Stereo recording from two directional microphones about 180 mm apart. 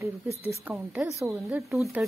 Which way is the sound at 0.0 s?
15° right (ahead or behind).